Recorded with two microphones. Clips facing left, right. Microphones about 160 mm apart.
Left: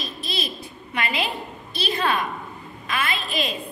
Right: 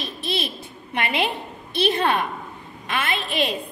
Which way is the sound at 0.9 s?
60° right (ahead or behind).